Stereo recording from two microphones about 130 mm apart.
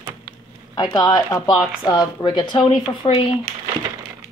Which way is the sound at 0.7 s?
30° left (ahead or behind).